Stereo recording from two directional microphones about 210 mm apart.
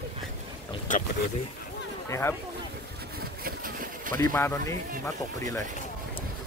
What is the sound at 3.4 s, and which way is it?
Vehicle, 40° right (ahead or behind).